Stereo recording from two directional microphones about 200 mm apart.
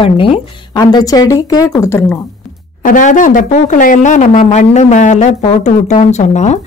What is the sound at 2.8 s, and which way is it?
Speech, 40° left (ahead or behind).